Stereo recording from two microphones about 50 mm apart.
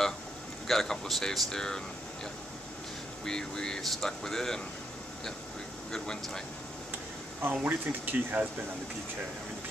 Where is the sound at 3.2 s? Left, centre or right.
Centre.